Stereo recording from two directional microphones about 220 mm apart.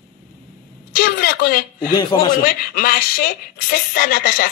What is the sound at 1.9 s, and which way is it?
Speech, 20° left (ahead or behind).